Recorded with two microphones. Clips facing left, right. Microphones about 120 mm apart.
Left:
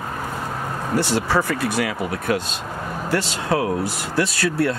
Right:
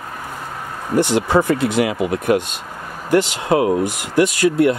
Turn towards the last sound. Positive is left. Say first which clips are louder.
# right 6 dB
turn(degrees=-15)  # may be behind; listen again after turning